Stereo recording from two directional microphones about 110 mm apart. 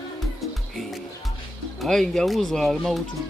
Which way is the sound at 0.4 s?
Centre (ahead or behind).